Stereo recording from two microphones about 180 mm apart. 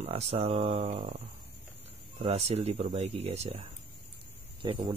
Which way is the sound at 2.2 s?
35° right (ahead or behind).